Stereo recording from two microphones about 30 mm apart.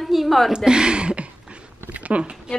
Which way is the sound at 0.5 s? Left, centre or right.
Right.